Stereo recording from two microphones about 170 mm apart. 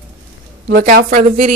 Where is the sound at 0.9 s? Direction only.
65° right (ahead or behind).